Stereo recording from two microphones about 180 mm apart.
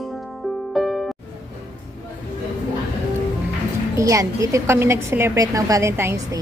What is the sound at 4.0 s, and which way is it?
A woman's voice, 20° right (ahead or behind).